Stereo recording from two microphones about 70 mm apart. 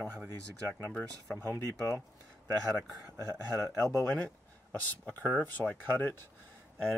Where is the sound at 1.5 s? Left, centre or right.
Left.